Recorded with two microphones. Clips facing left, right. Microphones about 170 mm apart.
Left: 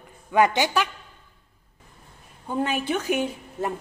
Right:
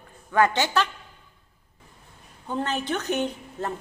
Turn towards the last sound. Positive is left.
turn(degrees=10)  # may be behind; listen again after turning